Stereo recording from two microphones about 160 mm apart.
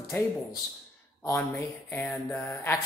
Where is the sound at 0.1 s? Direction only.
15° left (ahead or behind).